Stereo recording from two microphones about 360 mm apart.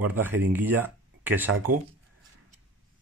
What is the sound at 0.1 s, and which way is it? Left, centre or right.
Speech, centre.